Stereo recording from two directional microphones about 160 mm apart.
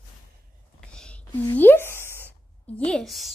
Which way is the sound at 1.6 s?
15° left (ahead or behind).